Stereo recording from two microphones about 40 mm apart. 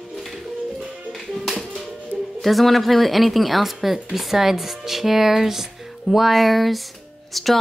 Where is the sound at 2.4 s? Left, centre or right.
Centre.